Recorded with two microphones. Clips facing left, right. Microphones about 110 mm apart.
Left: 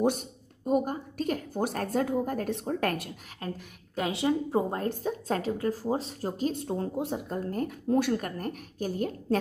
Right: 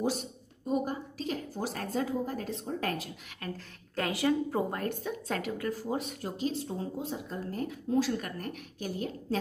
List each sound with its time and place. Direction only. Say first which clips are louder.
0.0 s a woman's voice: left 5 dB; 50° left (ahead or behind)
3.4 s a woman's voice: left 3 dB; 30° left (ahead or behind)
6.3 s a woman's voice: left 2 dB; 45° left (ahead or behind)
6.7 s speech: left 5 dB; 65° left (ahead or behind)
7.2 s a woman's voice: left 4 dB; 50° left (ahead or behind)